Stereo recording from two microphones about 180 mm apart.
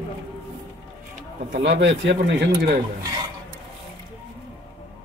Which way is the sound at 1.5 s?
65° right (ahead or behind).